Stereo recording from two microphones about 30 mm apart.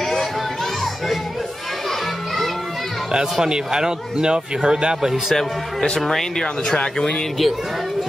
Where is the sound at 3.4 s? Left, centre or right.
Right.